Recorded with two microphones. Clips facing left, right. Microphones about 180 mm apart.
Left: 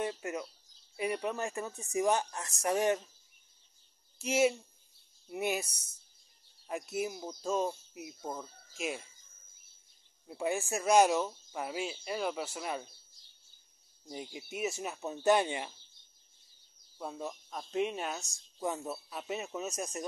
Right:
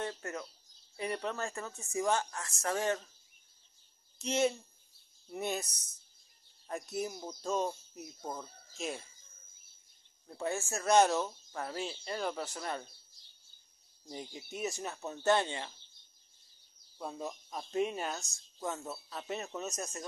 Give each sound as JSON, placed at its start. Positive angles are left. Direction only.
{"t": 0.0, "sound": "speech", "side_deg": 15}
{"t": 4.2, "sound": "speech", "side_deg": 10}
{"t": 10.2, "sound": "speech", "side_deg": 10}
{"t": 14.0, "sound": "speech", "side_deg": 5}
{"t": 17.0, "sound": "speech", "side_deg": 5}